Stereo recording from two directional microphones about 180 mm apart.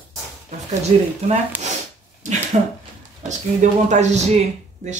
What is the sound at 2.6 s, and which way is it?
Speech, 45° right (ahead or behind).